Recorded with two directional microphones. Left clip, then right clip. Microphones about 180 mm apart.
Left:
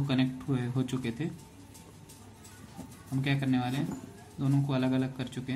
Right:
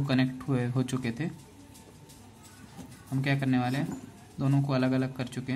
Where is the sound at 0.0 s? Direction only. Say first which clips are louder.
Right 2 dB; 20° right (ahead or behind).